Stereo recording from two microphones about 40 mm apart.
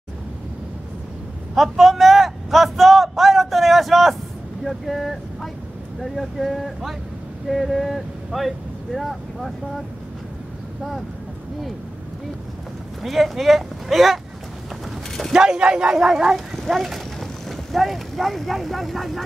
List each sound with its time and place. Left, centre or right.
1.5 s a man's voice: centre
13.0 s speech: centre
15.3 s speech: right
16.3 s speech: centre